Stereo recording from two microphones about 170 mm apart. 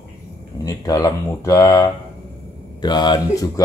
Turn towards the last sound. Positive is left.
turn(degrees=25)  # may be behind; listen again after turning